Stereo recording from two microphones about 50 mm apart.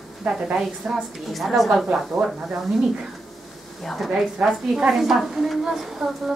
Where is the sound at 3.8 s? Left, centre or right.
Centre.